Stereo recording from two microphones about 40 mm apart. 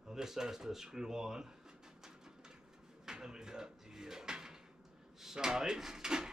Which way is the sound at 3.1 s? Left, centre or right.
Centre.